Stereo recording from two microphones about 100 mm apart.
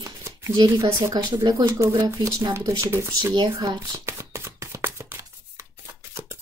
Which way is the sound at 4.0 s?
25° right (ahead or behind).